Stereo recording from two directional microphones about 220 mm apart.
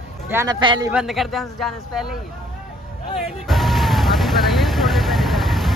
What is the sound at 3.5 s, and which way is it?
Vehicle, centre (ahead or behind).